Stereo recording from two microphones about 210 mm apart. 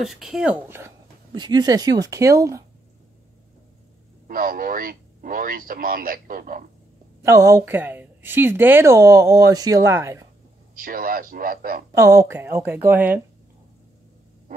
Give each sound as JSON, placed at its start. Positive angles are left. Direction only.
{"t": 0.0, "sound": "a woman's voice", "side_deg": 0}
{"t": 4.3, "sound": "speech", "side_deg": -45}
{"t": 7.2, "sound": "a woman's voice", "side_deg": -15}
{"t": 10.7, "sound": "speech", "side_deg": -45}
{"t": 11.9, "sound": "a woman's voice", "side_deg": -15}